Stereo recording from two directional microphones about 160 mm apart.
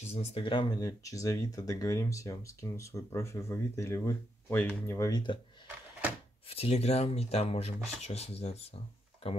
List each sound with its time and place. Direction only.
0.1 s speech: 40° left (ahead or behind)
6.5 s speech: 40° left (ahead or behind)